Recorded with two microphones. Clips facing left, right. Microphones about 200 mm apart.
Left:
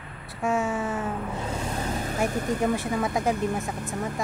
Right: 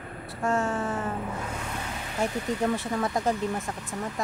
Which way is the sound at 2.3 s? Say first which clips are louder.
Left 2 dB; 50° left (ahead or behind).